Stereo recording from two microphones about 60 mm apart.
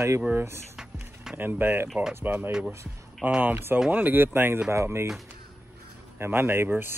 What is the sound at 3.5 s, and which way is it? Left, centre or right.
Speech, right.